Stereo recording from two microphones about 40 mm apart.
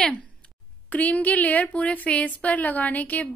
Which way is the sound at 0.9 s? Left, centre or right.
Left.